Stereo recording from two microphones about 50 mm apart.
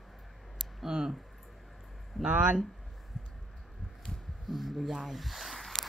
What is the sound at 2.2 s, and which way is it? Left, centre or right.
Speech, right.